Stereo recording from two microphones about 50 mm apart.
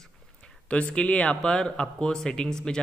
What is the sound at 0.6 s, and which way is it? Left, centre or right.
A man's voice, left.